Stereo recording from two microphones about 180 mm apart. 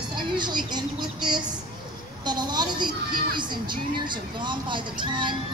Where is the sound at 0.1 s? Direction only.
25° right (ahead or behind).